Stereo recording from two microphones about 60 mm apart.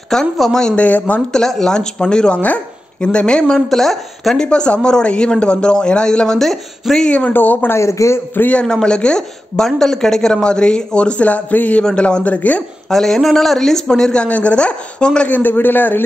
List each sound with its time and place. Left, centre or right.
0.1 s speech: centre
0.7 s speech: left
1.3 s speech: centre
3.5 s speech: centre
4.5 s speech: centre
7.1 s speech: left
7.3 s speech: left
7.7 s a man's voice: left
8.5 s speech: centre
11.8 s speech: centre
12.9 s speech: centre; by 16.0 s left